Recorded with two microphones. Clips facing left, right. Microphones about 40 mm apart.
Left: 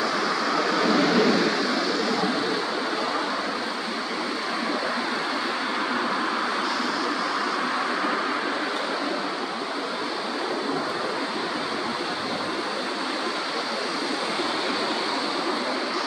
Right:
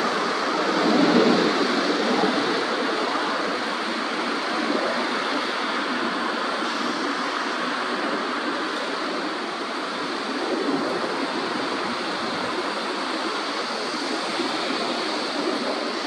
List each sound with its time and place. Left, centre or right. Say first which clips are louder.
0.6 s vehicle: right 2 dB; right